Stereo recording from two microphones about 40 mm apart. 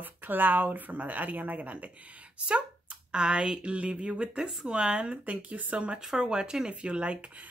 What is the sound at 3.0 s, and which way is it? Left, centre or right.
Speech, right.